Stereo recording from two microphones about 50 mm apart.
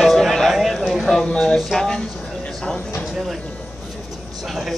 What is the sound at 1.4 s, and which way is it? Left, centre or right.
Music, centre.